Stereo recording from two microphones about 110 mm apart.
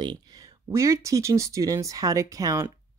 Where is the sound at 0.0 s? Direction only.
40° right (ahead or behind).